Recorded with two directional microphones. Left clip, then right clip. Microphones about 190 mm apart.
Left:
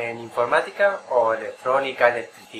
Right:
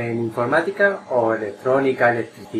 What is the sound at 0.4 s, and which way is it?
Speech, centre (ahead or behind).